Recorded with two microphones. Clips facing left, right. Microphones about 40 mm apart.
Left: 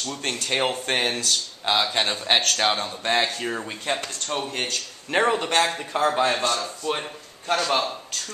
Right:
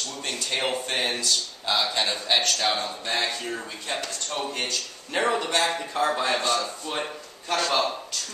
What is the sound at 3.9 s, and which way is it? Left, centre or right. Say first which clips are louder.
A man's voice: left 3 dB; left.